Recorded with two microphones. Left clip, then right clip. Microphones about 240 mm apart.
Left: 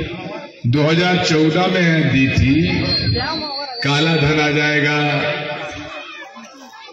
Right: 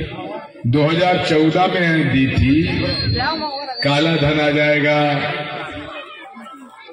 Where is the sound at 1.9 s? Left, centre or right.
Left.